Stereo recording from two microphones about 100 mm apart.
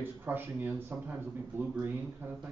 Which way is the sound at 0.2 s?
20° right (ahead or behind).